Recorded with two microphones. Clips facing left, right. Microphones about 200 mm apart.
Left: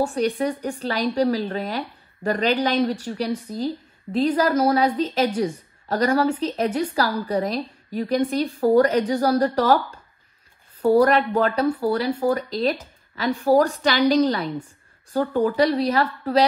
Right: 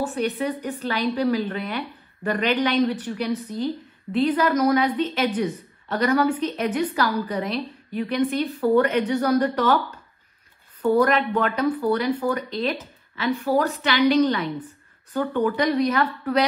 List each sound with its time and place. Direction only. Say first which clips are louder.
0.0 s a woman's voice: left 3 dB; 40° left (ahead or behind)
4.5 s a woman's voice: left 1 dB; 30° left (ahead or behind)